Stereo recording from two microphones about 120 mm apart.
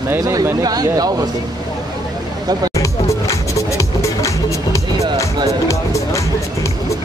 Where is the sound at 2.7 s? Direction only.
25° left (ahead or behind).